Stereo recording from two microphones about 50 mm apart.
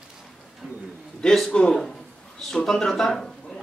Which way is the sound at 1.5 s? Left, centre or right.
Left.